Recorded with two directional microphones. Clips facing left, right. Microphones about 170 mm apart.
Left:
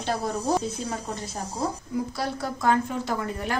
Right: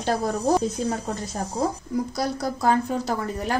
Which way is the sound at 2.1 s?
40° right (ahead or behind).